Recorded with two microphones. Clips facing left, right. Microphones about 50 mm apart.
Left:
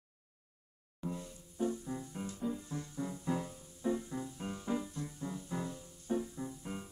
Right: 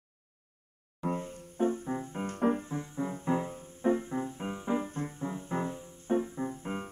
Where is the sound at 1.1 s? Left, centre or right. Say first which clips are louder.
Right 8 dB; right.